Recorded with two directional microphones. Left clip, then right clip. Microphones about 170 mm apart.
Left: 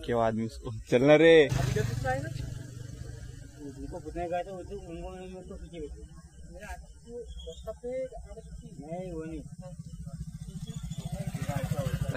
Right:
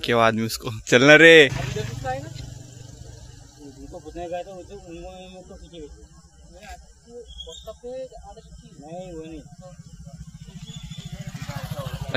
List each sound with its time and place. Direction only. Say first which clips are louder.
0.0 s speech: right 9 dB; 20° right (ahead or behind)
1.8 s vehicle: left 1 dB; 10° right (ahead or behind)
3.9 s speech: right 2 dB; centre (ahead or behind)
7.6 s speech: left 1 dB; 5° right (ahead or behind)
8.9 s speech: right 2 dB; 5° left (ahead or behind)
11.0 s vehicle: right 1 dB; 50° left (ahead or behind)